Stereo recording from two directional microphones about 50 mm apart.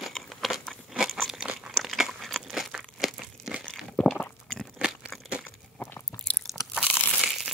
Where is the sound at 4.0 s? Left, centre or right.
Centre.